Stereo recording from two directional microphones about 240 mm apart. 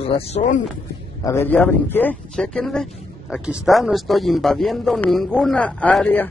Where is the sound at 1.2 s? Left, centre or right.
Centre.